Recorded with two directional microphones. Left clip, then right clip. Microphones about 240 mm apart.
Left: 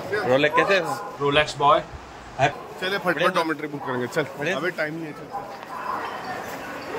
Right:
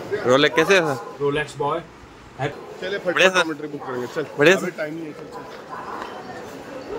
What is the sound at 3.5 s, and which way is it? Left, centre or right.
Speech, left.